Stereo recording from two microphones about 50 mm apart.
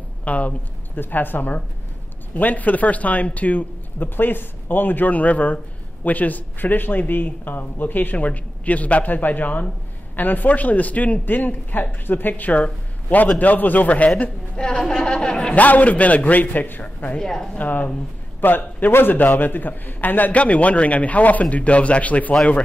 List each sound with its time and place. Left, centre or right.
0.2 s a woman's voice: left
0.9 s a man's voice: left
15.6 s a man's voice: left
17.2 s speech: centre
17.6 s a man's voice: left